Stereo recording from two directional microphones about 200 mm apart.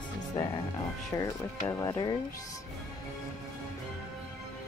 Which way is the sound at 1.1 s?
20° left (ahead or behind).